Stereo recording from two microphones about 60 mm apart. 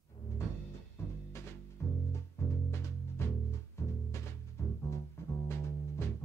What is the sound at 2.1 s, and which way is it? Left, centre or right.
Music, left.